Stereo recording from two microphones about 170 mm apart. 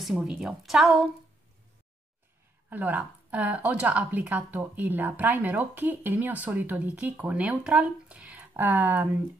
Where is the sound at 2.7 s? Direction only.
10° right (ahead or behind).